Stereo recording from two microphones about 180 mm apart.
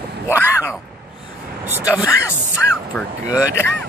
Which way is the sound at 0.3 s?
15° left (ahead or behind).